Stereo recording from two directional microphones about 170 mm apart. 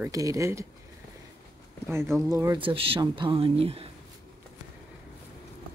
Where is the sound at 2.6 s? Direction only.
30° right (ahead or behind).